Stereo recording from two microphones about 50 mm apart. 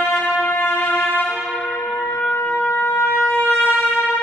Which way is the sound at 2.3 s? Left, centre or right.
Left.